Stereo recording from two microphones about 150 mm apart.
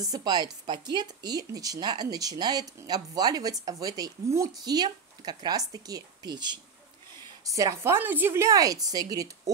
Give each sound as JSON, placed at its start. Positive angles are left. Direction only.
{"t": 0.0, "sound": "speech", "side_deg": -25}